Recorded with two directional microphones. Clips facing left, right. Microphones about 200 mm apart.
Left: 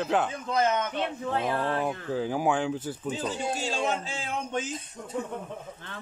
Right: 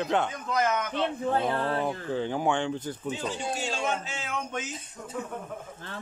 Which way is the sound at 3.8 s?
30° left (ahead or behind).